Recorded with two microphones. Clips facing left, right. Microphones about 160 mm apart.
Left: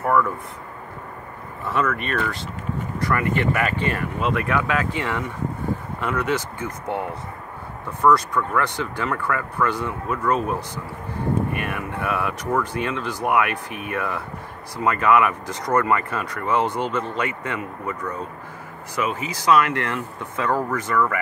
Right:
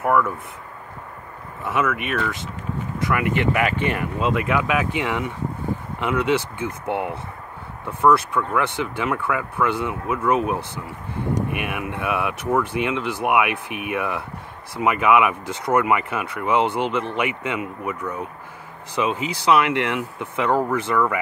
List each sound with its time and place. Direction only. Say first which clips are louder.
0.0 s speech: right 1 dB; 5° right (ahead or behind)
1.7 s speech: right 1 dB; 10° right (ahead or behind)
11.7 s speech: right 1 dB; 15° right (ahead or behind)